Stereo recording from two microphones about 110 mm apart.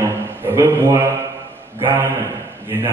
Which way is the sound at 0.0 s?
25° right (ahead or behind).